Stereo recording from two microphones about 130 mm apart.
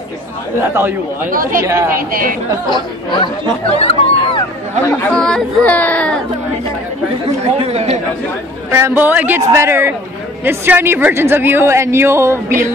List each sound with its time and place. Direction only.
0.6 s speech: 15° right (ahead or behind)
1.3 s speech: 90° right
1.6 s a woman's voice: 20° right (ahead or behind)
2.0 s speech: 90° right
2.7 s speech: 35° left (ahead or behind)
3.7 s speech: 45° left (ahead or behind)
5.1 s speech: 5° left (ahead or behind)
7.5 s speech: 50° right (ahead or behind)
8.6 s a woman's voice: 20° right (ahead or behind)